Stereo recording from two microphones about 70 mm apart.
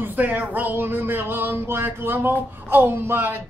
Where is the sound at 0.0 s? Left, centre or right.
Right.